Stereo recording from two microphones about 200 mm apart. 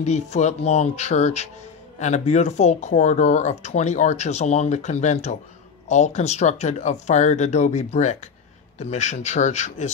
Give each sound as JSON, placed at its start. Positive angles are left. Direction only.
{"t": 0.0, "sound": "speech", "side_deg": 35}